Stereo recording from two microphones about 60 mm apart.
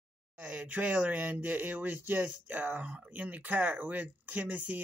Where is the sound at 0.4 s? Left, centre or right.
Right.